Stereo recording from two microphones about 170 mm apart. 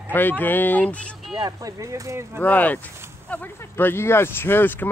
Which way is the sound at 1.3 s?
20° right (ahead or behind).